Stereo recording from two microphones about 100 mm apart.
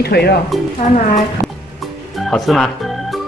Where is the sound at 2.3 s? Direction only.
5° left (ahead or behind).